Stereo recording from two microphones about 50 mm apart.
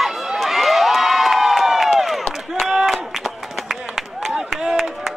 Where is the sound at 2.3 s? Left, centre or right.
Centre.